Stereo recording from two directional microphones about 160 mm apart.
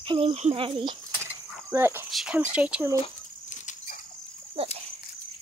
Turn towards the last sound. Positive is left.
turn(degrees=-35)  # may be behind; listen again after turning